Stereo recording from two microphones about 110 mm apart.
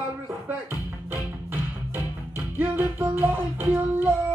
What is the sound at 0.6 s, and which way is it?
Music, 20° right (ahead or behind).